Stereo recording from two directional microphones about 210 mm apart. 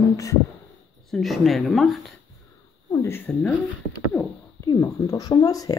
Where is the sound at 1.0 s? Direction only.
Centre (ahead or behind).